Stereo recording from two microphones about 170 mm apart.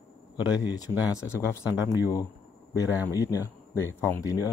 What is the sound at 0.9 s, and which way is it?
Speech, 5° right (ahead or behind).